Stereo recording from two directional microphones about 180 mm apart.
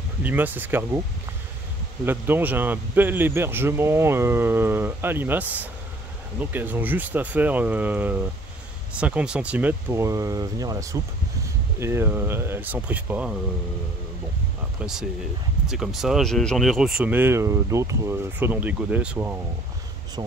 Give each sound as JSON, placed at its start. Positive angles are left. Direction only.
{"t": 0.2, "sound": "speech", "side_deg": -10}
{"t": 2.0, "sound": "speech", "side_deg": -10}
{"t": 14.8, "sound": "speech", "side_deg": -5}
{"t": 20.2, "sound": "speech", "side_deg": -25}